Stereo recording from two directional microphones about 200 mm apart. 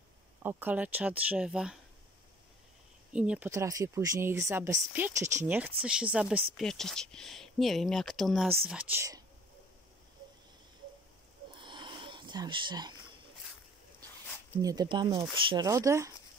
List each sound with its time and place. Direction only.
0.4 s speech: 10° right (ahead or behind)
3.1 s speech: 5° right (ahead or behind)
11.6 s a sound: 25° right (ahead or behind)
14.6 s speech: 20° right (ahead or behind)